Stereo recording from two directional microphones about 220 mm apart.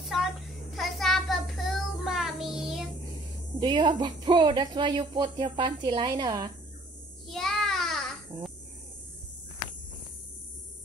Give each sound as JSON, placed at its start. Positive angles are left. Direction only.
{"t": 0.0, "sound": "child singing", "side_deg": 0}
{"t": 3.5, "sound": "speech", "side_deg": -20}
{"t": 7.2, "sound": "child singing", "side_deg": 0}